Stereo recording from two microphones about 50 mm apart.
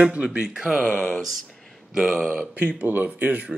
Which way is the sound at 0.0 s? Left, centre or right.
Right.